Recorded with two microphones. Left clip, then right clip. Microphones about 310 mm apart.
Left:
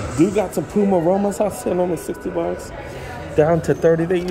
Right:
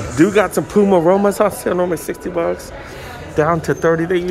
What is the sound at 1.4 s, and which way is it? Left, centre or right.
Speech, centre.